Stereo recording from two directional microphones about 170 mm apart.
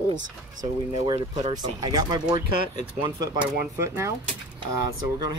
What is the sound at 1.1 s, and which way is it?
Speech, 40° right (ahead or behind).